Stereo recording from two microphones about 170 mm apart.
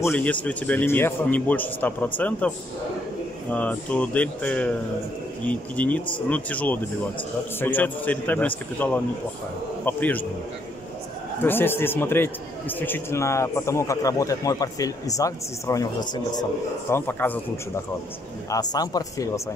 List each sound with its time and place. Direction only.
0.0 s a man's voice: 10° left (ahead or behind)
3.5 s a man's voice: 5° left (ahead or behind)
11.4 s a man's voice: 10° left (ahead or behind)
16.9 s a man's voice: 10° left (ahead or behind)
18.5 s speech: 20° left (ahead or behind)